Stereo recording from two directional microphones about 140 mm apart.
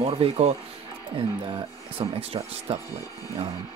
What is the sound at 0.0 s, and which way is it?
Speech, 45° right (ahead or behind).